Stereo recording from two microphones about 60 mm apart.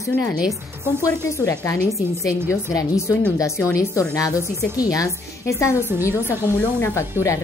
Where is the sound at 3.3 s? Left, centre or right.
Left.